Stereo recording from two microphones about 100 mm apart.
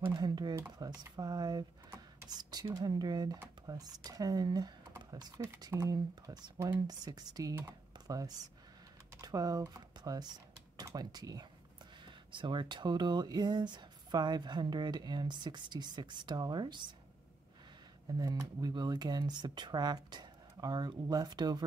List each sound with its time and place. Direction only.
0.0 s speech: 45° right (ahead or behind)
18.0 s speech: 40° right (ahead or behind)